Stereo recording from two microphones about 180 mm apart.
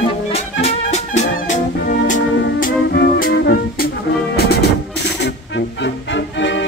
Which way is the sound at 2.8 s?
65° left (ahead or behind).